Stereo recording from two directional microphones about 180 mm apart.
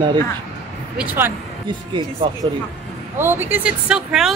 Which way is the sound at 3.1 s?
10° right (ahead or behind).